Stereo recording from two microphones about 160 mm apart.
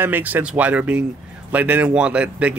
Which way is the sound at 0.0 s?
10° right (ahead or behind).